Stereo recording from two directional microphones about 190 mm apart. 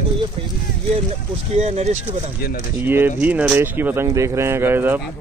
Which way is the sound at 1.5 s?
35° right (ahead or behind).